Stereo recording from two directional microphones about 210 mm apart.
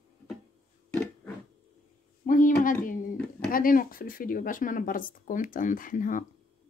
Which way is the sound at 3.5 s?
40° left (ahead or behind).